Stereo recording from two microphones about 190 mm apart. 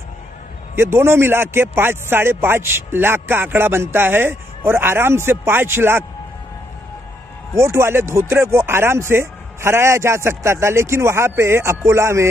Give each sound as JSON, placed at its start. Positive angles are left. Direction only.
{"t": 0.7, "sound": "speech", "side_deg": -10}
{"t": 7.5, "sound": "speech", "side_deg": -15}